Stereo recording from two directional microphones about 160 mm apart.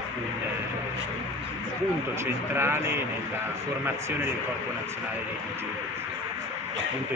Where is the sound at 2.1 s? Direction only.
15° right (ahead or behind).